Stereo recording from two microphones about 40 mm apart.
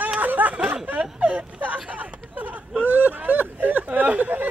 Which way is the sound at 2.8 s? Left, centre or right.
Right.